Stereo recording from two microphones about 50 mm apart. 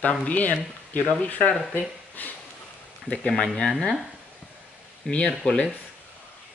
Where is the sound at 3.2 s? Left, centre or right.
Centre.